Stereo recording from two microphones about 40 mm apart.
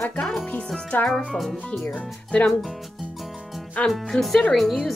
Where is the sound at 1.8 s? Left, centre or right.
Left.